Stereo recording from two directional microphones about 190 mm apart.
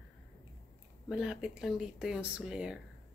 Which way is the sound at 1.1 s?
5° right (ahead or behind).